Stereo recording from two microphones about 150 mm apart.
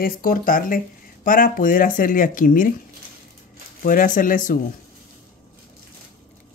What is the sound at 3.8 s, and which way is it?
Speech, 65° left (ahead or behind).